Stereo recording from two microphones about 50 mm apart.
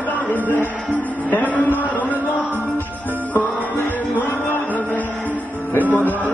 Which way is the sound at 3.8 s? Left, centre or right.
Left.